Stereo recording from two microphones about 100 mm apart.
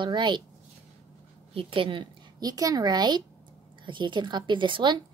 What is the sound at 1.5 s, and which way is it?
Speech, 70° right (ahead or behind).